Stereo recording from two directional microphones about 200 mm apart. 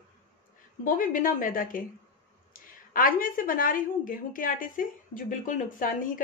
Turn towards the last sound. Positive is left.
turn(degrees=40)  # may be behind; listen again after turning